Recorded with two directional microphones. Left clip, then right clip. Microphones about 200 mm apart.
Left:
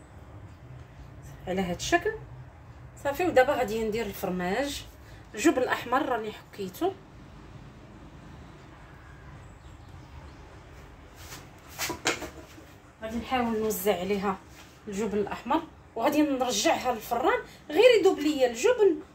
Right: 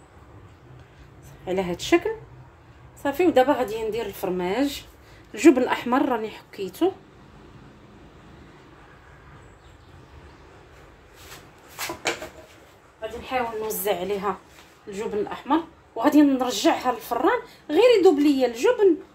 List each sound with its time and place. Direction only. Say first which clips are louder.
1.4 s a woman's voice: right 5 dB; 45° right (ahead or behind)
3.0 s a woman's voice: right 4 dB; 35° right (ahead or behind)
13.3 s a woman's voice: right 1 dB; 50° right (ahead or behind)
14.9 s a woman's voice: right 2 dB; 35° right (ahead or behind)